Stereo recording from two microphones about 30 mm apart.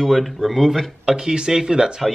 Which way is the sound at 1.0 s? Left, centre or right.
Right.